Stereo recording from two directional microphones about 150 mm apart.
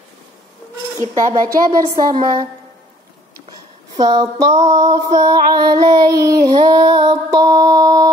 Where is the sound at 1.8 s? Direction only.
30° right (ahead or behind).